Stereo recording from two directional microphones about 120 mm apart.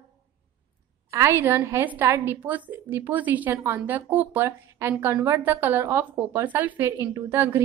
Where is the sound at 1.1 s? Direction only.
25° right (ahead or behind).